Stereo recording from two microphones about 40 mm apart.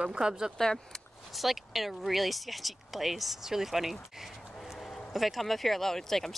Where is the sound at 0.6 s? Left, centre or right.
Centre.